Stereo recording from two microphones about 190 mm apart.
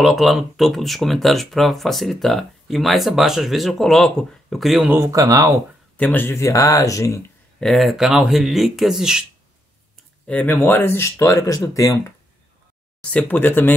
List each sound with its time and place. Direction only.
0.0 s speech: centre (ahead or behind)
4.9 s speech: 15° right (ahead or behind)
5.9 s speech: 10° left (ahead or behind)
7.6 s speech: centre (ahead or behind)
10.2 s speech: 10° left (ahead or behind)
13.0 s speech: 10° left (ahead or behind)